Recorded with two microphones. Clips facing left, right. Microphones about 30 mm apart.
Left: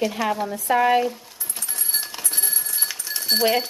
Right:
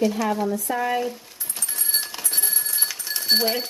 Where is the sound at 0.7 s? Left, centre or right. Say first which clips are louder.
Left 10 dB; left.